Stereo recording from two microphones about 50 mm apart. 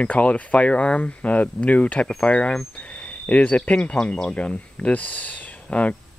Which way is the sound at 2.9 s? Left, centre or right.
Left.